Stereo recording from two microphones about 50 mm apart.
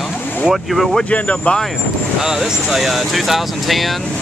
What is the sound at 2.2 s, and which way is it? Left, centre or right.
Speech, centre.